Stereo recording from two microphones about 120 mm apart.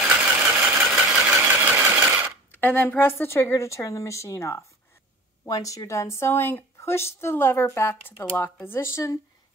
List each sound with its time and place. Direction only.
0.0 s sewing machine: 10° right (ahead or behind)
2.6 s speech: 15° left (ahead or behind)